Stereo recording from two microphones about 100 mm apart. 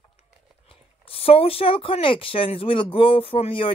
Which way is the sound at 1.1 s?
75° left (ahead or behind).